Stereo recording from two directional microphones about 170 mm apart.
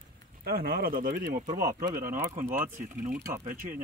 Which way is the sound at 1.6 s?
20° right (ahead or behind).